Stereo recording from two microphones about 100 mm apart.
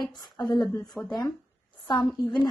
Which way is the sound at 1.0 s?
15° right (ahead or behind).